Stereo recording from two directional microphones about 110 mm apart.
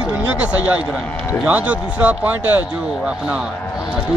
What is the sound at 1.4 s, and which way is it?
Speech, 15° right (ahead or behind).